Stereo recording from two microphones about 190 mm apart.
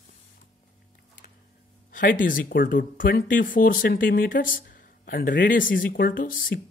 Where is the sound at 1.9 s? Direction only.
45° left (ahead or behind).